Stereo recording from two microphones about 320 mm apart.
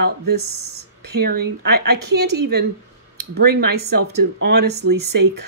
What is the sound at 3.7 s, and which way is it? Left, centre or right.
Speech, right.